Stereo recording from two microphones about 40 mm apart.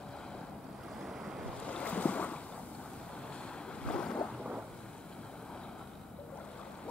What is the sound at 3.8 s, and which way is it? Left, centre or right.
Boat, left.